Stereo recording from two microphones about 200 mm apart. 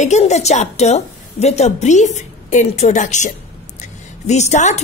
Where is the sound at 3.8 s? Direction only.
35° left (ahead or behind).